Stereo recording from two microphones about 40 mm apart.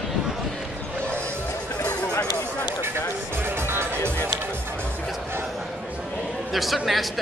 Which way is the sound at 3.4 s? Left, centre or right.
Right.